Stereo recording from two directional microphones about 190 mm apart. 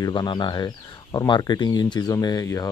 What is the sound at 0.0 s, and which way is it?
Speech, 20° left (ahead or behind).